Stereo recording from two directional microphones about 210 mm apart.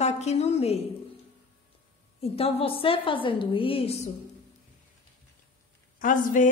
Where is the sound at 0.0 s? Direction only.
30° left (ahead or behind).